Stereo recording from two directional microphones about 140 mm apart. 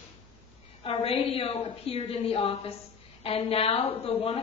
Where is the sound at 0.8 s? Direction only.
45° left (ahead or behind).